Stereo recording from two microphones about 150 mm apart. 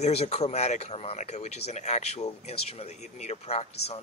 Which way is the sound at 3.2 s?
45° left (ahead or behind).